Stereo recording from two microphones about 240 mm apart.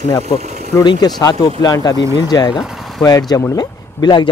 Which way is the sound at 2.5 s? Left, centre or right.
Centre.